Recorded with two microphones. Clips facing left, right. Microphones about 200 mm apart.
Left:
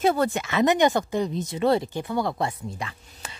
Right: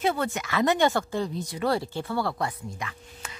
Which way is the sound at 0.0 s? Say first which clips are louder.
Left 5 dB; 40° left (ahead or behind).